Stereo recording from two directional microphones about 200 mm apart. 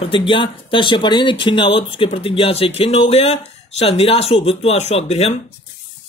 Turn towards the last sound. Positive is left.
turn(degrees=35)  # may be behind; listen again after turning